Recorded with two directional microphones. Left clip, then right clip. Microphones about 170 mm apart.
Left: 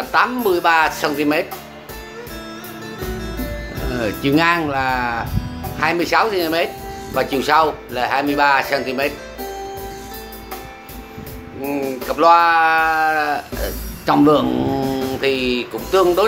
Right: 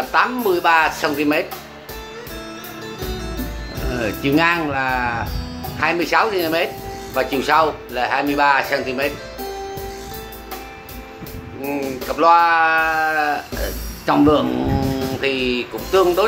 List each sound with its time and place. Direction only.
0.1 s speech: 10° left (ahead or behind)
3.8 s speech: 15° left (ahead or behind)
11.6 s speech: 20° left (ahead or behind)